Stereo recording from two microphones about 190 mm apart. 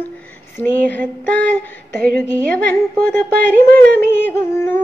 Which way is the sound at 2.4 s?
10° left (ahead or behind).